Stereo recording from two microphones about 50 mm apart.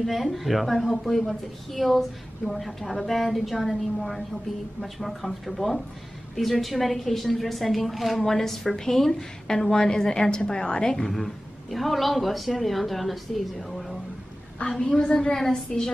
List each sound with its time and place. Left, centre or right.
0.0 s a woman's voice: centre
14.6 s a woman's voice: centre